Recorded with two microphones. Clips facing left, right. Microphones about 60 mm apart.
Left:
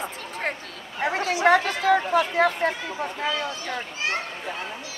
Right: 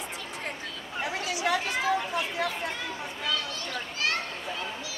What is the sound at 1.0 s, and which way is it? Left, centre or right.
Chatter, left.